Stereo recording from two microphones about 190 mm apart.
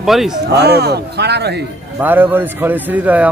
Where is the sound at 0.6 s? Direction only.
60° right (ahead or behind).